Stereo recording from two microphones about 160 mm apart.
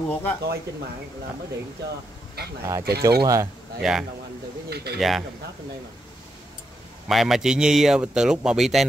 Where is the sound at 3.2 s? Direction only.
20° right (ahead or behind).